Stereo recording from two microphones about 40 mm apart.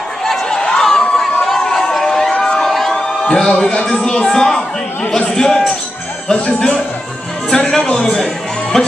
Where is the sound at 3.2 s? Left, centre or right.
Centre.